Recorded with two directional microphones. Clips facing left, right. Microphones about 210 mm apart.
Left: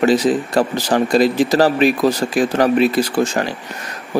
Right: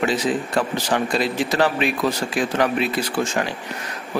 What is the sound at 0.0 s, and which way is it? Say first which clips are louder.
Speech: left 7 dB; 40° left (ahead or behind).